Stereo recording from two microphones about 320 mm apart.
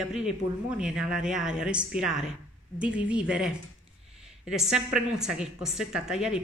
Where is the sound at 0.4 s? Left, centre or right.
Left.